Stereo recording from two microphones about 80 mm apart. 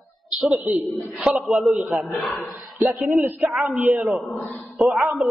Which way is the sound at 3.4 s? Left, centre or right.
Centre.